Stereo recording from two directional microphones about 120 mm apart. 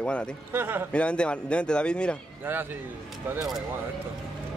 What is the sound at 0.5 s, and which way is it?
Speech, 15° right (ahead or behind).